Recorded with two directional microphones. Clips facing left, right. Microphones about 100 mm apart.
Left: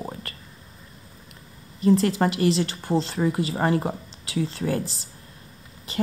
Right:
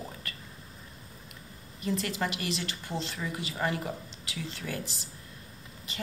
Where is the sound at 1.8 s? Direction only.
35° left (ahead or behind).